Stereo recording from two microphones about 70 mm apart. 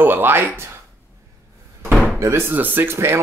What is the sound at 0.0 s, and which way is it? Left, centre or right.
Speech, right.